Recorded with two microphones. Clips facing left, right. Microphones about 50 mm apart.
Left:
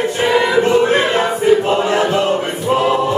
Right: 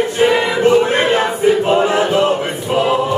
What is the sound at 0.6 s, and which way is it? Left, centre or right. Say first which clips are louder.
Music: right 1 dB; centre.